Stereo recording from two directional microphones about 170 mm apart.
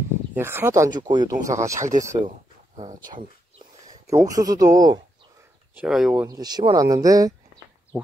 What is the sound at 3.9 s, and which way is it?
Speech, 20° right (ahead or behind).